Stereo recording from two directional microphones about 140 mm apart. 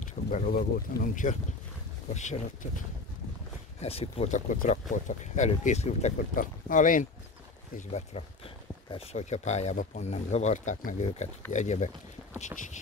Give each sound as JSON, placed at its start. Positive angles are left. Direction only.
{"t": 0.0, "sound": "speech", "side_deg": 75}
{"t": 2.1, "sound": "speech", "side_deg": 60}
{"t": 3.8, "sound": "speech", "side_deg": 45}
{"t": 4.6, "sound": "speech", "side_deg": 65}
{"t": 6.3, "sound": "speech", "side_deg": 70}
{"t": 8.9, "sound": "speech", "side_deg": 50}